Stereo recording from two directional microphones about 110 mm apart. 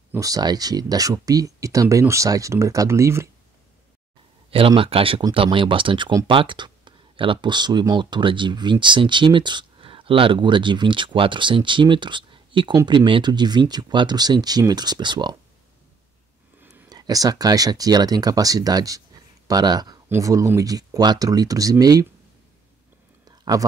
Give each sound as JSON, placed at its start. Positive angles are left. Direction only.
{"t": 0.1, "sound": "speech", "side_deg": -30}
{"t": 4.5, "sound": "speech", "side_deg": -55}
{"t": 16.9, "sound": "speech", "side_deg": -35}
{"t": 23.2, "sound": "a sound", "side_deg": -40}